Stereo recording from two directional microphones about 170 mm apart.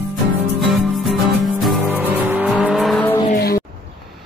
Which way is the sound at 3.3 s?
65° left (ahead or behind).